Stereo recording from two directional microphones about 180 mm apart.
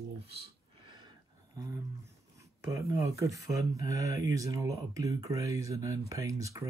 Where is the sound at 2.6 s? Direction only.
20° right (ahead or behind).